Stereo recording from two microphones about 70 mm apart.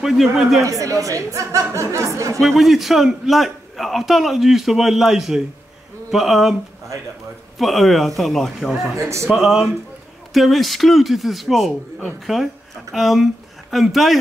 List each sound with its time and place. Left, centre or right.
0.0 s a man's voice: centre
0.6 s speech: right
2.4 s a man's voice: centre
7.5 s a man's voice: centre
8.9 s speech: right
9.3 s a man's voice: centre